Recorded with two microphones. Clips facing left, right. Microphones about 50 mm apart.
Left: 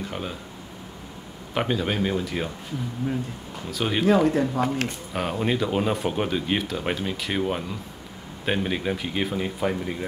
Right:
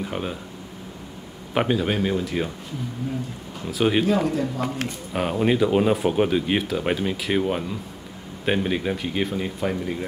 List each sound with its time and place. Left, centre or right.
0.0 s speech: centre
1.5 s speech: centre
3.7 s speech: centre
4.0 s speech: left
5.1 s speech: centre